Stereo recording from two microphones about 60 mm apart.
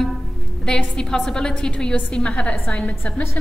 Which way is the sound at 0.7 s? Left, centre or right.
Centre.